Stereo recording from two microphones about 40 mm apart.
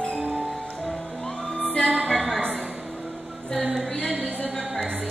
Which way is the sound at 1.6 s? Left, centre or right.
Left.